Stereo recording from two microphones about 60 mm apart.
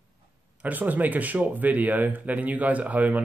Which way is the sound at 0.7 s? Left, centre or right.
Right.